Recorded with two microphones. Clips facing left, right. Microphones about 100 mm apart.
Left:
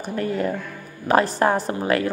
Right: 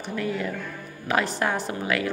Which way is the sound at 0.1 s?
40° left (ahead or behind).